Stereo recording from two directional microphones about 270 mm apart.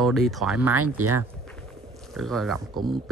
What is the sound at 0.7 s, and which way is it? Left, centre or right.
Speech, right.